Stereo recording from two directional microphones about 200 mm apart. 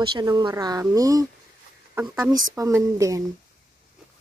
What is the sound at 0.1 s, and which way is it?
Speech, 20° right (ahead or behind).